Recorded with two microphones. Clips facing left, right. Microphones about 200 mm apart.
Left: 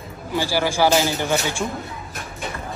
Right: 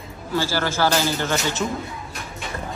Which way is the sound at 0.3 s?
15° left (ahead or behind).